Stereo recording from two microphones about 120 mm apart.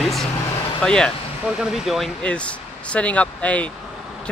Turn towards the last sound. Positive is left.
turn(degrees=10)  # may be behind; listen again after turning